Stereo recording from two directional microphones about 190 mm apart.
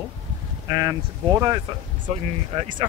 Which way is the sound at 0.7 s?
20° right (ahead or behind).